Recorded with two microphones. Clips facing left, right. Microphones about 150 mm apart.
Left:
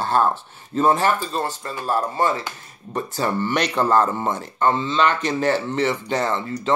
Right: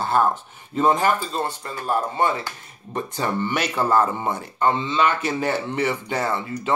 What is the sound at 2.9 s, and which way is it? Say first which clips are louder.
Speech: left 2 dB; 20° right (ahead or behind).